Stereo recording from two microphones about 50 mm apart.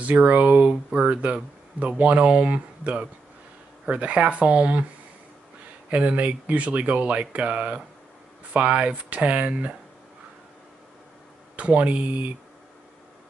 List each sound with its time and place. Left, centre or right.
0.0 s speech: right
5.9 s speech: right
11.5 s speech: right